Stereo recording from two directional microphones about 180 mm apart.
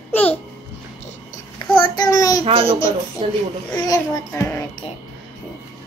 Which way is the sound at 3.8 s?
20° left (ahead or behind).